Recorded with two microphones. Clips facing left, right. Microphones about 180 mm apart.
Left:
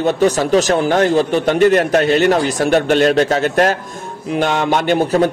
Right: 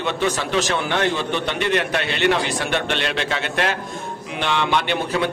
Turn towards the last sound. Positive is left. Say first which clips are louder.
# left 8 dB
turn(degrees=40)  # may be behind; listen again after turning